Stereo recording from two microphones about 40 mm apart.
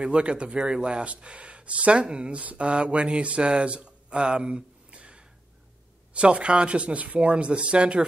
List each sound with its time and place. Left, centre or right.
0.0 s speech: right
1.0 s speech: right